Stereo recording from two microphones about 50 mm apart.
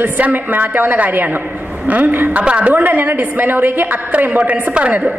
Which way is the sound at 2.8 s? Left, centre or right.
Right.